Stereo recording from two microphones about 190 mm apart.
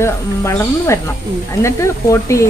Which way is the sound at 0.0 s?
15° left (ahead or behind).